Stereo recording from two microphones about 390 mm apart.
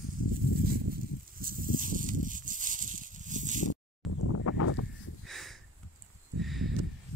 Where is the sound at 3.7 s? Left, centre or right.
Left.